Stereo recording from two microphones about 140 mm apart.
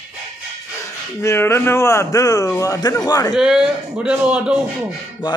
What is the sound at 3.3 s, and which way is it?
A man's voice, 5° right (ahead or behind).